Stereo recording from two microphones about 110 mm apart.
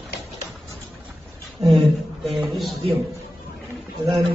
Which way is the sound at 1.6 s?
25° right (ahead or behind).